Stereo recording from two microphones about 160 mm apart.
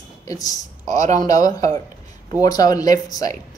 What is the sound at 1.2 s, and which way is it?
Speech, 25° left (ahead or behind).